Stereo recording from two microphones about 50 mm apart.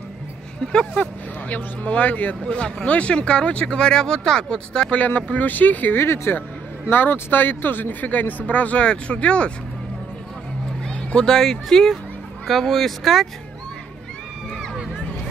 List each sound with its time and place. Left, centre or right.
0.6 s speech: centre
1.5 s speech: left
4.9 s speech: left
5.9 s speech: left
6.9 s speech: left
10.9 s a sound: left
11.3 s speech: centre